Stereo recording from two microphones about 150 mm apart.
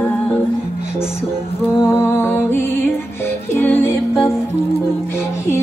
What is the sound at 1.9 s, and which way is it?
Music, 15° left (ahead or behind).